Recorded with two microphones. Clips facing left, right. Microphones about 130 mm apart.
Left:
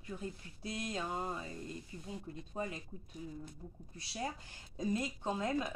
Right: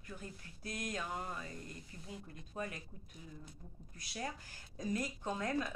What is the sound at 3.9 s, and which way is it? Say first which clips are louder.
A woman's voice: left 2 dB; 30° left (ahead or behind).